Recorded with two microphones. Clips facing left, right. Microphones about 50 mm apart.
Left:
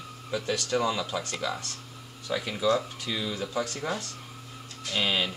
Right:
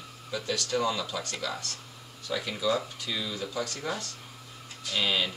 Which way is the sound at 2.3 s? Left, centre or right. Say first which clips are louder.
Left 3 dB; centre.